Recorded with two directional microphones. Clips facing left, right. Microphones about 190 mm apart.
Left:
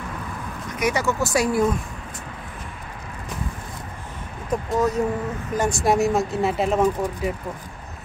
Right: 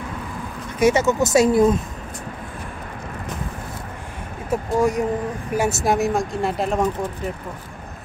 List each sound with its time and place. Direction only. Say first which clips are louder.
0.7 s speech: right 6 dB; 25° right (ahead or behind)
4.5 s speech: right 2 dB; 10° right (ahead or behind)